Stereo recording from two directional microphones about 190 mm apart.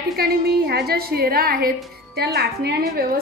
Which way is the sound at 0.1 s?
55° right (ahead or behind).